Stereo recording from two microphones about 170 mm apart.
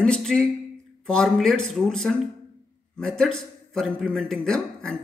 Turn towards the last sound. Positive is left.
turn(degrees=5)  # may be behind; listen again after turning